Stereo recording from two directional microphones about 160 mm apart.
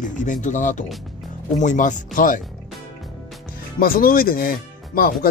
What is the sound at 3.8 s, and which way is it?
Speech, 65° left (ahead or behind).